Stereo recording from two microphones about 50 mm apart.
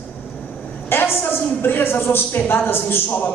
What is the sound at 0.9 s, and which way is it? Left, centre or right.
A woman's voice, left.